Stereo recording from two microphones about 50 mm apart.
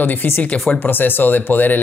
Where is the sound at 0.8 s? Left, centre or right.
Left.